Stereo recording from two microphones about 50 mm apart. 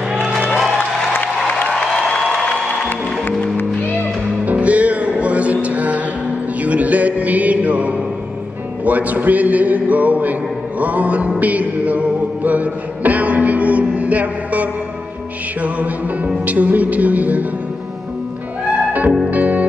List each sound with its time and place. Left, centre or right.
0.1 s music: centre
1.7 s music: centre
2.2 s music: left
4.5 s music: right
8.8 s a sound: right
10.8 s music: right
16.4 s a sound: right
19.3 s music: right